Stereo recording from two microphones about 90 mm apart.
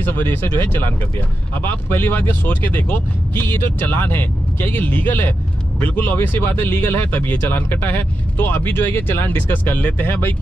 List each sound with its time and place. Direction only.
0.0 s speech: 25° left (ahead or behind)